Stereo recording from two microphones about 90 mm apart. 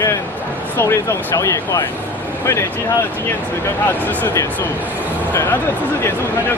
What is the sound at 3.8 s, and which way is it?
Speech, 20° left (ahead or behind).